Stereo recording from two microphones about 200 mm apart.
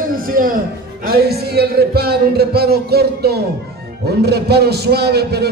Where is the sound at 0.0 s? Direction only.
45° right (ahead or behind).